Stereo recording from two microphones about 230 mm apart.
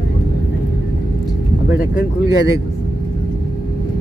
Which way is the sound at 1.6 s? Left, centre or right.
Left.